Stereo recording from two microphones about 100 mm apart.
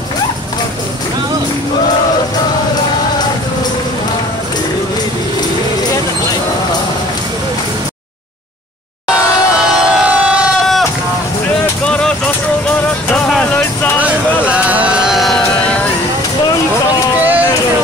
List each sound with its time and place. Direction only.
9.8 s siren: 10° right (ahead or behind)
11.8 s vehicle: 5° left (ahead or behind)
13.9 s vehicle: 15° right (ahead or behind)
15.0 s music: centre (ahead or behind)
15.6 s music: 10° left (ahead or behind)
17.2 s a sound: 15° right (ahead or behind)